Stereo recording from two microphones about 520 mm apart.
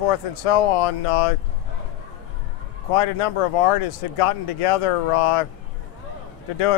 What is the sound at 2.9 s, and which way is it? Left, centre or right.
Speech, left.